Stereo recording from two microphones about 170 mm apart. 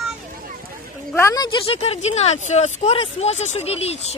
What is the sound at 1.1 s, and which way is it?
Speech, 20° left (ahead or behind).